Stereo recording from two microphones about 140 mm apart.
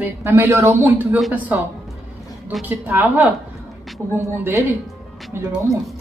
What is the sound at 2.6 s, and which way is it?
Speech, 15° right (ahead or behind).